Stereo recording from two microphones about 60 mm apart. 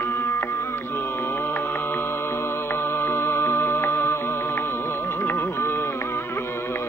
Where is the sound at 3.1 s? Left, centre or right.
Left.